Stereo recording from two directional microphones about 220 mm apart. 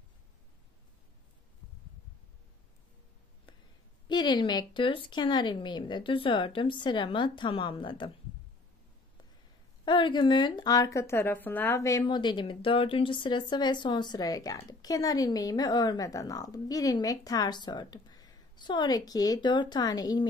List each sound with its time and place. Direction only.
4.1 s speech: 20° left (ahead or behind)
9.8 s speech: 20° left (ahead or behind)